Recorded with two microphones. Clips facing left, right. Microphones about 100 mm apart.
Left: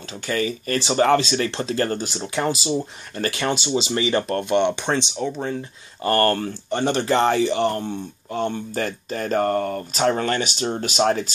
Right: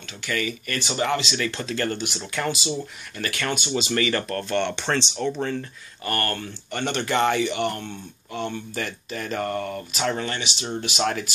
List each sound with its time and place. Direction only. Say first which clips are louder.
0.3 s speech: left 5 dB; 35° left (ahead or behind)
0.9 s speech: left 7 dB; 40° left (ahead or behind)
2.1 s speech: left 4 dB; 25° left (ahead or behind)
2.4 s speech: left 4 dB; 35° left (ahead or behind); by 5.7 s 10° left (ahead or behind)
6.0 s speech: left 8 dB; 35° left (ahead or behind)